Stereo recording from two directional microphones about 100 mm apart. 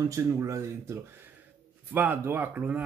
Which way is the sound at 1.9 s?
20° right (ahead or behind).